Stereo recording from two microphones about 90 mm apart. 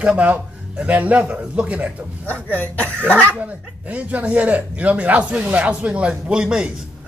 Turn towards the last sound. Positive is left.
turn(degrees=-10)  # may be behind; listen again after turning